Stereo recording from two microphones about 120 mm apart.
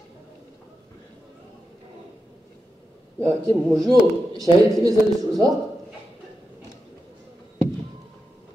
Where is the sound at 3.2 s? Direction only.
30° right (ahead or behind).